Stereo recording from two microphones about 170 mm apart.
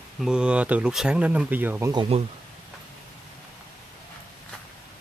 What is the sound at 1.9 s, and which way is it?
Speech, 30° right (ahead or behind).